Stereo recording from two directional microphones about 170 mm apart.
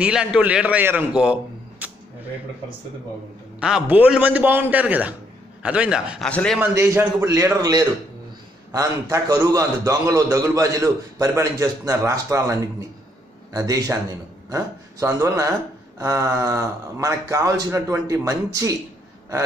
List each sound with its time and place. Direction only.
0.0 s a man's voice: 5° right (ahead or behind)
3.5 s a man's voice: 5° right (ahead or behind)
6.6 s a man's voice: 15° right (ahead or behind)